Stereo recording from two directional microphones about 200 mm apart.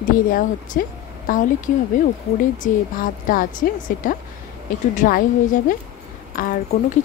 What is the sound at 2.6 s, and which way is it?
A woman's voice, 45° left (ahead or behind).